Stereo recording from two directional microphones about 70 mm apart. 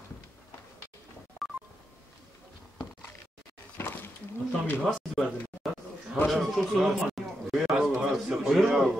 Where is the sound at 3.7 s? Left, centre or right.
Left.